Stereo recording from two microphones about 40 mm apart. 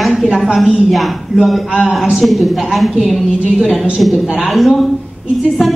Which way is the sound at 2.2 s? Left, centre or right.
Centre.